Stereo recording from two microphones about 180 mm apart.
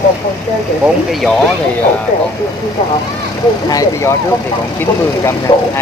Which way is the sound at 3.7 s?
15° left (ahead or behind).